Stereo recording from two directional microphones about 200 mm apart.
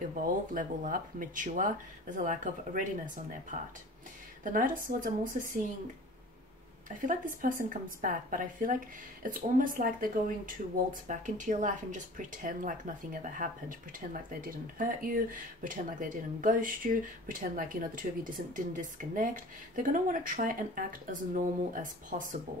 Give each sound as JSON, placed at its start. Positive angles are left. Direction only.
{"t": 0.1, "sound": "a woman's voice", "side_deg": -40}
{"t": 4.4, "sound": "a woman's voice", "side_deg": -40}
{"t": 7.0, "sound": "a woman's voice", "side_deg": -40}